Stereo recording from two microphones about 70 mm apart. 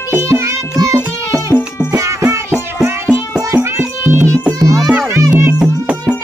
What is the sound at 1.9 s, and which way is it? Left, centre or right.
Music, right.